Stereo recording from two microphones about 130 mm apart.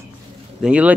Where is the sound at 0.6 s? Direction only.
10° right (ahead or behind).